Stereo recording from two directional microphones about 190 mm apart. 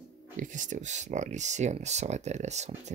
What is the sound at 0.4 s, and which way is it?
Speech, 40° right (ahead or behind).